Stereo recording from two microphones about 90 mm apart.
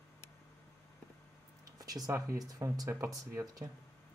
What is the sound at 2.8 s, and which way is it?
Speech, 30° right (ahead or behind).